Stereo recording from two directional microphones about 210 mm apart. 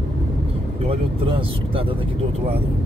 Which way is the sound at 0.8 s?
25° right (ahead or behind).